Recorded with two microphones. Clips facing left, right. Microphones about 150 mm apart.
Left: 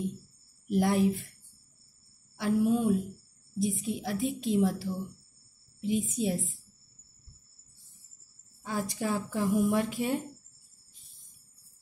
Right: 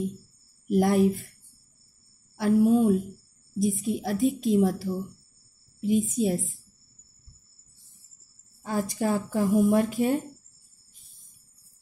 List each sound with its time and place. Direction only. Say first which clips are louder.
0.7 s a woman's voice: right 4 dB; 45° right (ahead or behind)
2.3 s a woman's voice: right 6 dB; 45° right (ahead or behind)
8.6 s a woman's voice: right 5 dB; 45° right (ahead or behind)